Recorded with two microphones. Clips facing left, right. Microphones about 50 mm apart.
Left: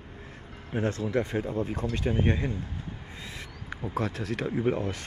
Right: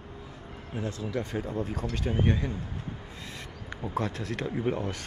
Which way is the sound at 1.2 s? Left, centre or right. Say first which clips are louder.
Left 2 dB; left.